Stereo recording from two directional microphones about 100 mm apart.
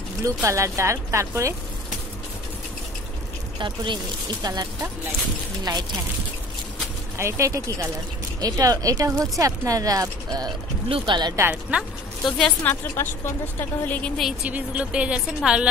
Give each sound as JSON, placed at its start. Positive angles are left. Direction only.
{"t": 0.2, "sound": "speech", "side_deg": -30}
{"t": 3.5, "sound": "speech", "side_deg": -50}
{"t": 7.2, "sound": "speech", "side_deg": -30}
{"t": 10.9, "sound": "speech", "side_deg": -50}
{"t": 11.7, "sound": "speech", "side_deg": -10}
{"t": 12.3, "sound": "a woman's voice", "side_deg": 5}
{"t": 12.6, "sound": "a woman's voice", "side_deg": 20}
{"t": 14.4, "sound": "speech", "side_deg": -15}